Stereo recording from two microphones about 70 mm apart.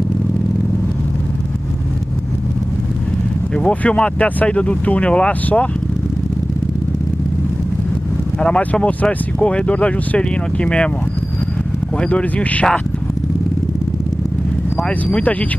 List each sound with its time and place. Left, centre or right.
3.5 s speech: centre
8.4 s speech: centre
12.0 s speech: centre
14.9 s speech: centre